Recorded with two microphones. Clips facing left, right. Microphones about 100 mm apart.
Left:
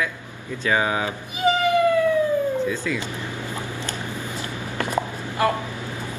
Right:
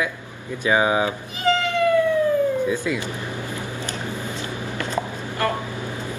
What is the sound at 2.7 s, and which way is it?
Speech, 15° right (ahead or behind).